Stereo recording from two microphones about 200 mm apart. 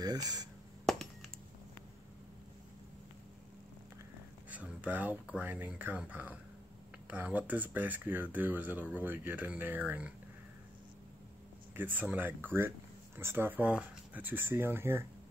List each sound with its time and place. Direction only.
0.0 s speech: 20° right (ahead or behind)
0.9 s a sound: centre (ahead or behind)
4.5 s speech: 5° right (ahead or behind)
11.7 s speech: 10° right (ahead or behind)